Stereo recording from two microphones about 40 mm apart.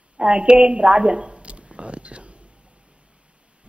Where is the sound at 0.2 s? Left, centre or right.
Right.